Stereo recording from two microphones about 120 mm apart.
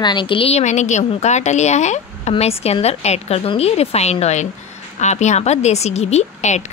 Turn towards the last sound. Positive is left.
turn(degrees=70)  # may be behind; listen again after turning